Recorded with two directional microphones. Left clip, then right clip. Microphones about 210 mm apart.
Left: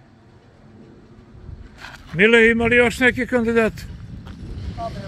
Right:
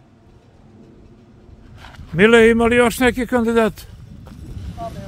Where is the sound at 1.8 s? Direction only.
15° left (ahead or behind).